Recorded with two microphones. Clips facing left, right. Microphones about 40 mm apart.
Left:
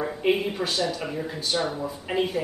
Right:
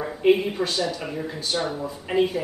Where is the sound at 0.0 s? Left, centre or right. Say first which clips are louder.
Right 4 dB; centre.